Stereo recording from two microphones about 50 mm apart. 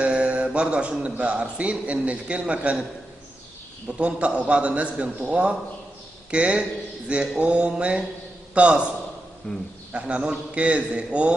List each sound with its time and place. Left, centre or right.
0.0 s a man's voice: right
4.0 s a man's voice: right
9.5 s a man's voice: centre
9.9 s a man's voice: right